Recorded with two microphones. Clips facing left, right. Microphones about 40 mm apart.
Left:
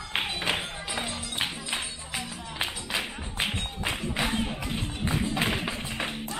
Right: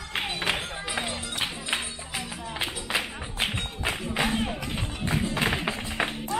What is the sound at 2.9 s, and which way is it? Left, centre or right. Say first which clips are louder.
Music: right 1 dB; centre.